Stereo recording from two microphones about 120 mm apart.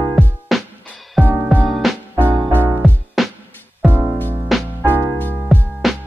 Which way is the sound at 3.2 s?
Centre (ahead or behind).